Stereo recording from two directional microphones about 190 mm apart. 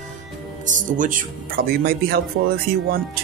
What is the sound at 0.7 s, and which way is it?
Speech, 45° right (ahead or behind).